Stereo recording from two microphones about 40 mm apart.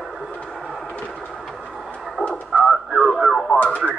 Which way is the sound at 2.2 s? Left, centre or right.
Left.